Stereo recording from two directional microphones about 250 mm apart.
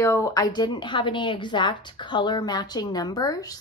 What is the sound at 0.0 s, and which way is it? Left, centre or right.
A woman's voice, centre.